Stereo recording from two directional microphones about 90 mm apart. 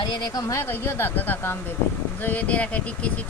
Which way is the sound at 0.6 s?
25° left (ahead or behind).